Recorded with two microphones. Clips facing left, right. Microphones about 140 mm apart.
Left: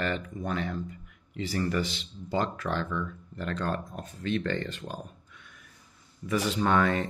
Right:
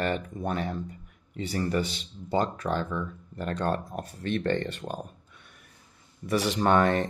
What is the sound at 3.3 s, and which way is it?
Speech, 50° right (ahead or behind).